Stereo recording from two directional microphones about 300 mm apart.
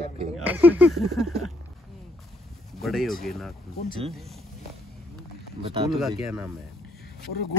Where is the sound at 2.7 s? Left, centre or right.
Centre.